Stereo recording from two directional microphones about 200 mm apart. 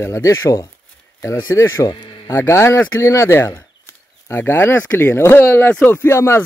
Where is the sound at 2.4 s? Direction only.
15° left (ahead or behind).